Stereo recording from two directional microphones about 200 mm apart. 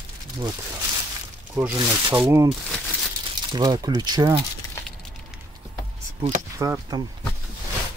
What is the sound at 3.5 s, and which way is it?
Speech, 20° right (ahead or behind).